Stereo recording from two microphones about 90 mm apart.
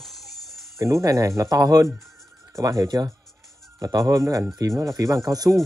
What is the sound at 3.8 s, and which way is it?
Speech, 45° right (ahead or behind).